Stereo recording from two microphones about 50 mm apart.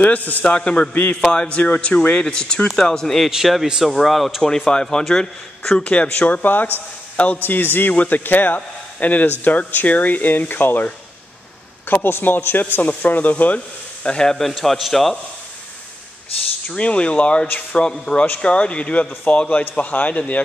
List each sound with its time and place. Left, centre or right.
0.0 s speech: left; by 3.3 s centre
3.3 s speech: centre
4.5 s speech: centre; by 10.9 s left
11.9 s speech: left
14.0 s speech: centre
14.5 s speech: centre
16.6 s speech: left